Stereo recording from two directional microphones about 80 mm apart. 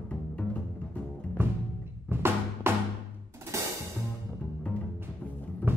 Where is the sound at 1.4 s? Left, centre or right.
Right.